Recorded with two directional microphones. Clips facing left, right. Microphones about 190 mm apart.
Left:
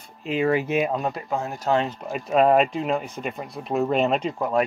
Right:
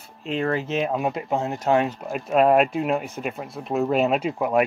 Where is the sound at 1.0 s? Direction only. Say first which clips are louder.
Right 3 dB; 20° right (ahead or behind).